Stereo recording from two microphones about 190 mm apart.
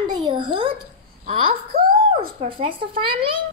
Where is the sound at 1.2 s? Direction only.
50° right (ahead or behind).